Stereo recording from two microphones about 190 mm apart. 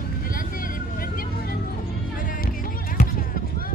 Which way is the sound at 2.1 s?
45° left (ahead or behind).